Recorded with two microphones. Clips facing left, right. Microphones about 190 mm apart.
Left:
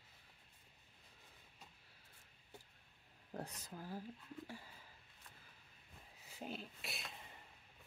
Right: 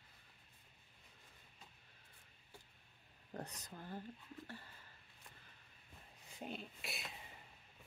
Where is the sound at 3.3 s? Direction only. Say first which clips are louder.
Left 1 dB; 5° left (ahead or behind).